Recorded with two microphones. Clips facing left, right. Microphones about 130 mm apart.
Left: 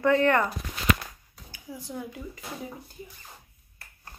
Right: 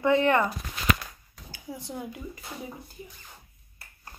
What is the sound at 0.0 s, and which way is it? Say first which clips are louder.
Speech: even; 15° right (ahead or behind).